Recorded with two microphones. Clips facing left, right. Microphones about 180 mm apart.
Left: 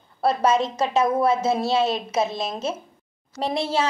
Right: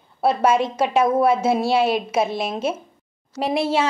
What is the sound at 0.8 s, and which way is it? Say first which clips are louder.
A woman's voice: right 3 dB; 30° right (ahead or behind).